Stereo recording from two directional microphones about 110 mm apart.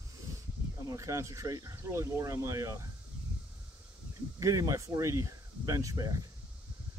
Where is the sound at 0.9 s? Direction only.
30° right (ahead or behind).